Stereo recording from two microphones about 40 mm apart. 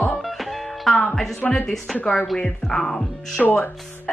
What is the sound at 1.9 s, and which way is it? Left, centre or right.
Speech, left.